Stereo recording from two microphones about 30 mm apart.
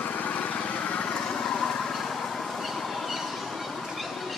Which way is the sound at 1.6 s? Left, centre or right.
Left.